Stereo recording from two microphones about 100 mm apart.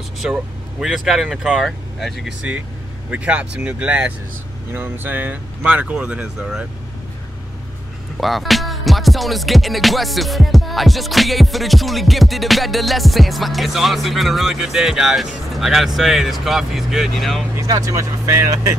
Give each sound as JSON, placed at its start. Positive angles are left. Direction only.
{"t": 0.2, "sound": "music", "side_deg": 0}
{"t": 3.1, "sound": "speech", "side_deg": -10}
{"t": 8.2, "sound": "music", "side_deg": 0}
{"t": 17.6, "sound": "speech", "side_deg": -35}